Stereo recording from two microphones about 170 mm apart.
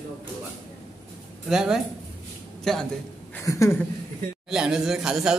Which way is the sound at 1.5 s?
5° right (ahead or behind).